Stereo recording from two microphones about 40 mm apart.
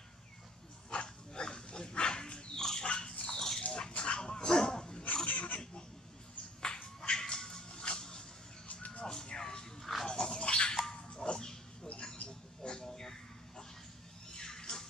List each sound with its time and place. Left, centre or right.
0.8 s dog: left
3.6 s dog: left
5.2 s pig: left
6.6 s music: centre
10.0 s dog: left
10.9 s a sound: left
14.3 s a sound: centre